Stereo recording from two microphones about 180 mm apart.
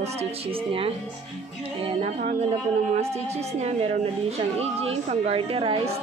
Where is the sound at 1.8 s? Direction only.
35° right (ahead or behind).